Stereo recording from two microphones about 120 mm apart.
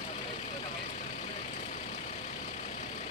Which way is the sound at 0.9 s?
85° left.